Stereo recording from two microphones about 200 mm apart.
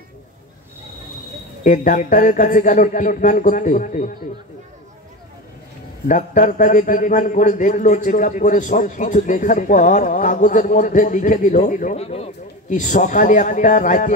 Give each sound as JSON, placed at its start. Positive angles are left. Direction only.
{"t": 1.6, "sound": "a man's voice", "side_deg": 40}
{"t": 6.0, "sound": "a man's voice", "side_deg": 40}